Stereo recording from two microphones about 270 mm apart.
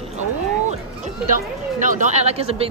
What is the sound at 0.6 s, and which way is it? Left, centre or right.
A woman's voice, right.